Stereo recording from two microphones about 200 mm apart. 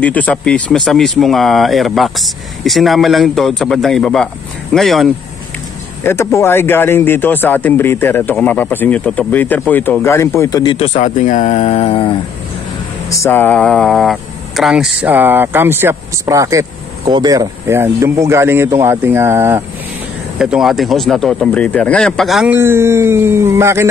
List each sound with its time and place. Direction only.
0.0 s speech: 5° left (ahead or behind)
6.0 s speech: 10° left (ahead or behind)
10.9 s speech: 40° left (ahead or behind)
13.1 s speech: 10° left (ahead or behind); by 23.9 s 15° right (ahead or behind)